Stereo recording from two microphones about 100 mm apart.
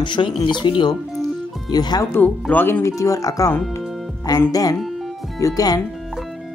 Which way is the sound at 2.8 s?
30° left (ahead or behind).